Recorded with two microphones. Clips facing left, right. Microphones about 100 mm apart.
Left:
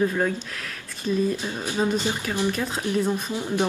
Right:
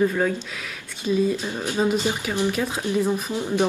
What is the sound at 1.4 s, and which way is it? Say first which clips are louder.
Speech: right 2 dB; 15° right (ahead or behind).